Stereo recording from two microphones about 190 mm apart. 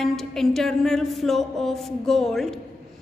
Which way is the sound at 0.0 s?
Centre (ahead or behind).